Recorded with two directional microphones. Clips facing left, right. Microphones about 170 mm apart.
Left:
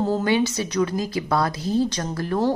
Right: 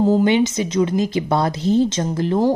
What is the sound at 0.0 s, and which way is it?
A woman's voice, 20° right (ahead or behind).